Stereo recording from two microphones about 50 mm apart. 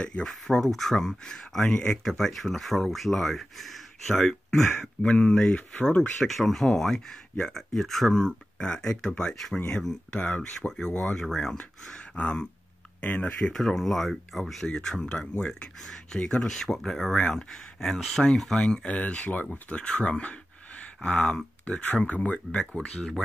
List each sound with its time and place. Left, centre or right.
0.2 s speech: centre
5.0 s speech: left
6.1 s speech: centre
10.1 s speech: left
11.0 s speech: centre
13.0 s speech: left
13.4 s speech: centre
18.4 s speech: centre
21.6 s speech: left